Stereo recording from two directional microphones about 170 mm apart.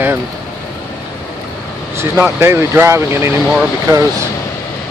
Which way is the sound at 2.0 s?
15° right (ahead or behind).